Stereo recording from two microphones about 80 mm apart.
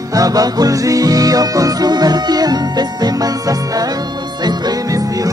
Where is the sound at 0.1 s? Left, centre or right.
Right.